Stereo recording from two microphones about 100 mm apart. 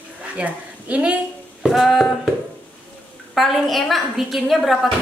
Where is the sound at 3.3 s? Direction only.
Centre (ahead or behind).